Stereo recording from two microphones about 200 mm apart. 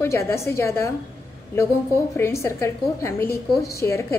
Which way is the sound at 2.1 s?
15° left (ahead or behind).